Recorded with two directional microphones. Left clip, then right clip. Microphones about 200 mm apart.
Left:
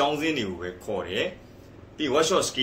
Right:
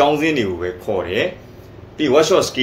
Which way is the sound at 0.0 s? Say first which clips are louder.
Right 9 dB; 15° left (ahead or behind).